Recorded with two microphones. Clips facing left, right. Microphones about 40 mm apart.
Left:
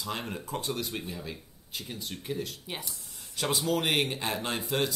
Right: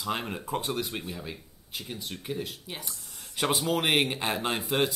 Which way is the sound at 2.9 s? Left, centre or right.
Right.